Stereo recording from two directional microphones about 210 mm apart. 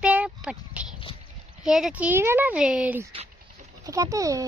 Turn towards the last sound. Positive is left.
turn(degrees=-15)  # may be behind; listen again after turning